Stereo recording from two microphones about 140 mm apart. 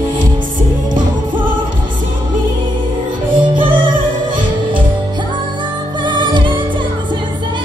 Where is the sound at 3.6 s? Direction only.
40° right (ahead or behind).